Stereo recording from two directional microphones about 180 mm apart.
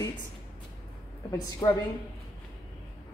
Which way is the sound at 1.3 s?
20° left (ahead or behind).